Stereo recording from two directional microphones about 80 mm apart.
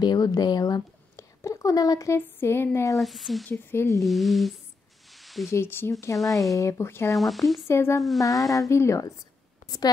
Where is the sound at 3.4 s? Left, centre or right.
Left.